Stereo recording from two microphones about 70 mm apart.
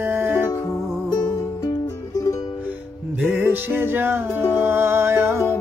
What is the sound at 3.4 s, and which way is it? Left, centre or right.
Music, right.